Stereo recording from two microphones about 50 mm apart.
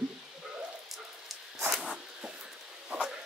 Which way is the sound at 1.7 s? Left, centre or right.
Centre.